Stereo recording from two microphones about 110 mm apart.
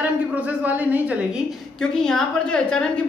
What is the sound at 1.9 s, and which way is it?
Speech, 5° left (ahead or behind).